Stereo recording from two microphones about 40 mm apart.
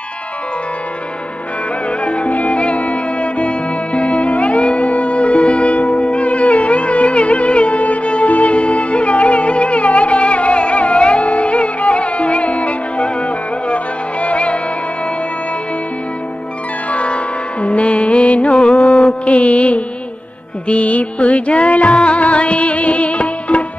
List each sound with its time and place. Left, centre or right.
2.0 s music: left
14.2 s music: left
16.9 s music: left
18.5 s mantra: centre
19.2 s music: left